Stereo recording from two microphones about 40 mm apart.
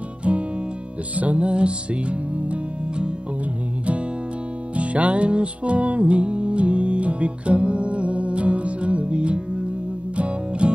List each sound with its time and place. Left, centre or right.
0.2 s music: right
4.7 s music: right